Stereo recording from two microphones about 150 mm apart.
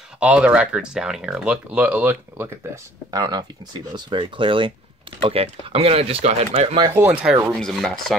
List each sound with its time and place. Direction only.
0.2 s speech: 10° right (ahead or behind); by 6.8 s 45° right (ahead or behind)
7.0 s speech: 5° right (ahead or behind)